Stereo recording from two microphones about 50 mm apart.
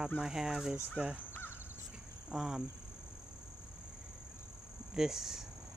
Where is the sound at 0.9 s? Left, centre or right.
Right.